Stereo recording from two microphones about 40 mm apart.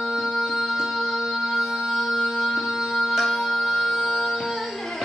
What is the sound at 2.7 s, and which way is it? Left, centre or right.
Music, centre.